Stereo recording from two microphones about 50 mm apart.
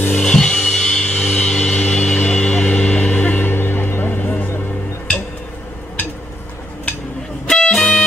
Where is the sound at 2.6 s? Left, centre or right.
Left.